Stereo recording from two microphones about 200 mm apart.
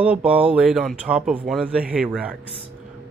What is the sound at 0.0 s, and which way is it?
Speech, 5° right (ahead or behind).